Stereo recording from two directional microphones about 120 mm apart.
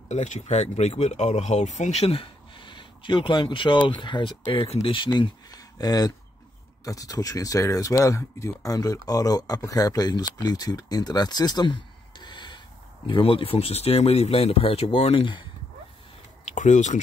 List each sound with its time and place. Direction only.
0.1 s speech: 75° left (ahead or behind); by 15.4 s 45° left (ahead or behind)
16.4 s speech: 90° left